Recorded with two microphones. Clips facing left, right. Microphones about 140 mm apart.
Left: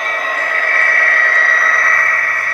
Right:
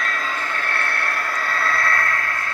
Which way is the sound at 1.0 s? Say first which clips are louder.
Left 7 dB; 85° left.